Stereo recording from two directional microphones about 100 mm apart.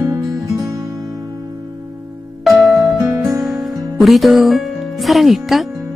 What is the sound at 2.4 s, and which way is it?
Music, centre (ahead or behind).